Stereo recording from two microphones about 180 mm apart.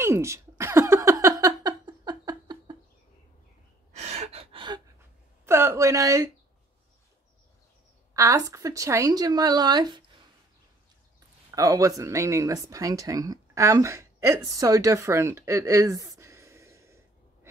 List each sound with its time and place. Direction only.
0.0 s a sound: 15° right (ahead or behind)
3.9 s gasp: 40° right (ahead or behind)
5.4 s speech: 15° right (ahead or behind)
8.1 s speech: 15° right (ahead or behind)
11.5 s speech: 20° right (ahead or behind)